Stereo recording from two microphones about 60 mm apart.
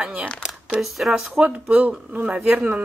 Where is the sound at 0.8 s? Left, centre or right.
Centre; by 2.3 s right.